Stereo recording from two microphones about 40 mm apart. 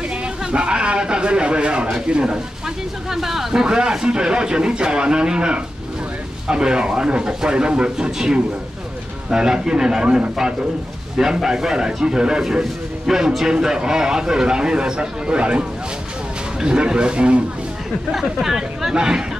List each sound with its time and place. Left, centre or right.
0.2 s a sound: right
1.9 s speech: right
3.1 s speech: centre
3.6 s speech: right
11.1 s speech: centre
13.1 s speech: centre
13.4 s speech: centre
18.1 s speech: centre